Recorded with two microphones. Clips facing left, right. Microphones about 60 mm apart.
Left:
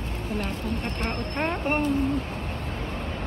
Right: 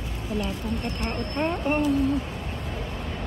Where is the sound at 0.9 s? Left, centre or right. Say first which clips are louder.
Right 1 dB; left.